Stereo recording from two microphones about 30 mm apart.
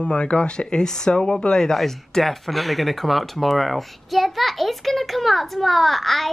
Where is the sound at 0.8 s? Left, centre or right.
Centre.